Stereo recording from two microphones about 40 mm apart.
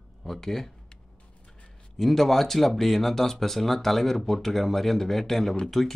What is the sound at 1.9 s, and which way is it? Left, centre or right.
Speech, centre.